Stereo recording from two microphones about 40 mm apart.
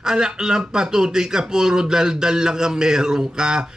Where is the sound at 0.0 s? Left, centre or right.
Centre.